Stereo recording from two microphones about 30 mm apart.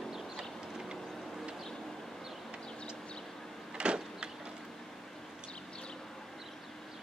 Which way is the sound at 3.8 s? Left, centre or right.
Right.